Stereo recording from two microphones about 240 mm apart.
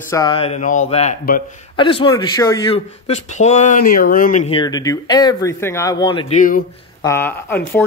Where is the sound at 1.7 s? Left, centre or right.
Left.